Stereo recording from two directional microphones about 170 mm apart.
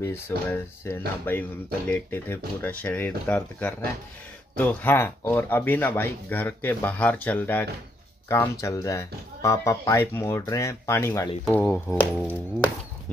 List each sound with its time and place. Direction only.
0.0 s speech: 15° left (ahead or behind)